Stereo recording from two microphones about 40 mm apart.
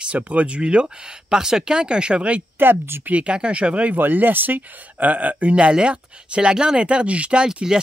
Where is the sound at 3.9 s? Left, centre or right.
Right.